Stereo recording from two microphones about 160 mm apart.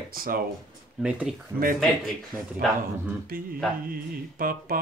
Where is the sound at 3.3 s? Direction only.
65° right (ahead or behind).